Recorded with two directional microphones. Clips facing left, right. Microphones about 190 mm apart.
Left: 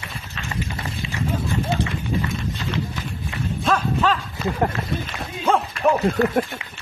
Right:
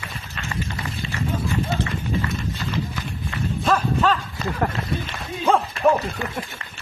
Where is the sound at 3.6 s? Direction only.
Centre (ahead or behind).